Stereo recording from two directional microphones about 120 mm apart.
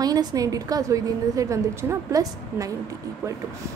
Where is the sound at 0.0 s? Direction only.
30° right (ahead or behind).